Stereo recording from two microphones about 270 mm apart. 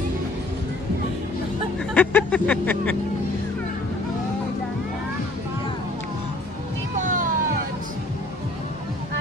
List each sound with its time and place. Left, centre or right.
2.0 s speech: centre
7.0 s vehicle: right